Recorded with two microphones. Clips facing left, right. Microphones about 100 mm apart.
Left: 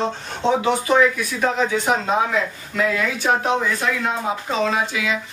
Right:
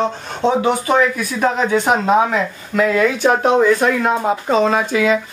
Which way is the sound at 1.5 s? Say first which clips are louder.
Right 4 dB; 55° right (ahead or behind).